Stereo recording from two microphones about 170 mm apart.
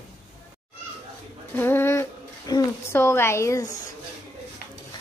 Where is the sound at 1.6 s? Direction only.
15° left (ahead or behind).